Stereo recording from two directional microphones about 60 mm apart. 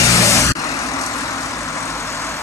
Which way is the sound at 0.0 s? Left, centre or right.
Left.